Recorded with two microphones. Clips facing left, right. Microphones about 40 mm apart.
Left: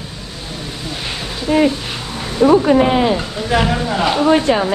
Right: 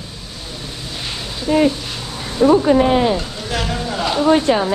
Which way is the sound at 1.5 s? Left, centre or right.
Left.